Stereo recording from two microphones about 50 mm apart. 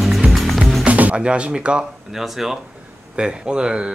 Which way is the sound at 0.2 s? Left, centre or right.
Centre.